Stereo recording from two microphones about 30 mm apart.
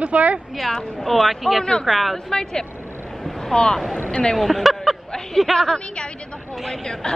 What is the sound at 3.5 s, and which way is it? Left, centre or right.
Speech, left.